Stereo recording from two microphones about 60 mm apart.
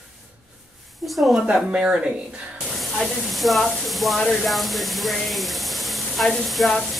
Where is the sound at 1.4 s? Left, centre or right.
Centre.